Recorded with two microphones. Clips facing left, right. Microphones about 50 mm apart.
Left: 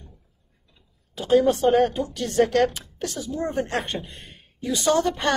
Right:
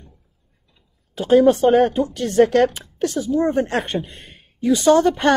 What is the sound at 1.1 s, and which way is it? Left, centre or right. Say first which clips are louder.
A woman's voice: right 5 dB; right.